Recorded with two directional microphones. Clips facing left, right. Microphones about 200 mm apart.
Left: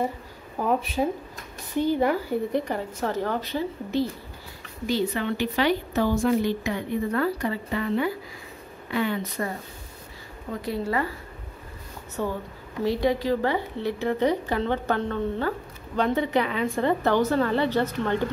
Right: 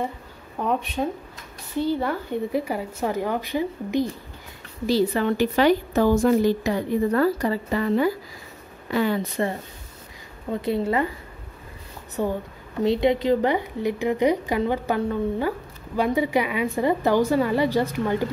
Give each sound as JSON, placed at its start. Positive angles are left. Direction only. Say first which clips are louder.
{"t": 0.6, "sound": "speech", "louder": "left 1 dB", "side_deg": 5}
{"t": 1.8, "sound": "speech", "louder": "left 2 dB", "side_deg": 15}
{"t": 2.3, "sound": "speech", "louder": "right 1 dB", "side_deg": -5}
{"t": 4.8, "sound": "a woman's voice", "louder": "right 5 dB", "side_deg": -35}
{"t": 10.6, "sound": "speech", "louder": "right 4 dB", "side_deg": -25}
{"t": 12.2, "sound": "speech", "louder": "right 3 dB", "side_deg": -15}